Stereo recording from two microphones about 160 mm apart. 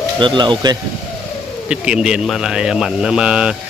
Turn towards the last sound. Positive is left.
turn(degrees=-5)  # may be behind; listen again after turning